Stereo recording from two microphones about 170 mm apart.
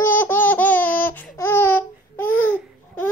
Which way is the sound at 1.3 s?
15° left (ahead or behind).